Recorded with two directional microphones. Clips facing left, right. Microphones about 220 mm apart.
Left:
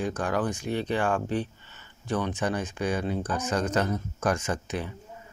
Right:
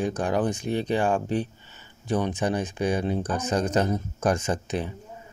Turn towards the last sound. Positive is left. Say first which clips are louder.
# right 3 dB
turn(degrees=-20)  # may be behind; listen again after turning